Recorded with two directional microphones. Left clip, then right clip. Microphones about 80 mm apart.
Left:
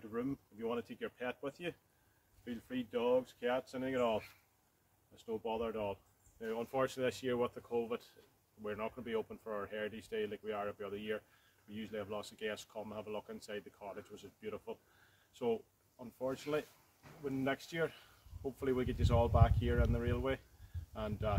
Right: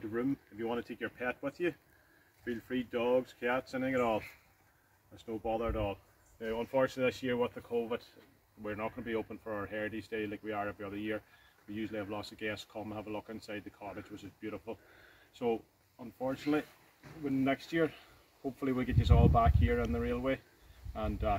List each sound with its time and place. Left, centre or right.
0.1 s speech: left
5.6 s speech: left